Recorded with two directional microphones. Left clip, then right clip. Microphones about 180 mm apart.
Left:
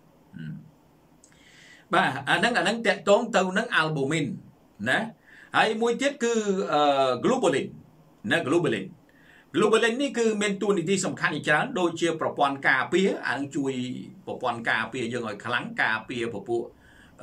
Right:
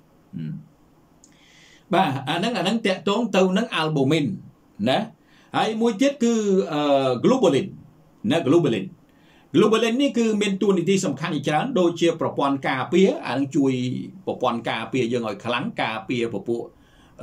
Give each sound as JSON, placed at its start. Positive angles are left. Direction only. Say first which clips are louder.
{"t": 1.9, "sound": "speech", "louder": "right 1 dB", "side_deg": -15}